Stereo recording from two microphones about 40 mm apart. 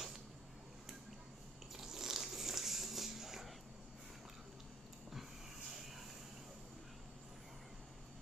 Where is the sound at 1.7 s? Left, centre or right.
Centre.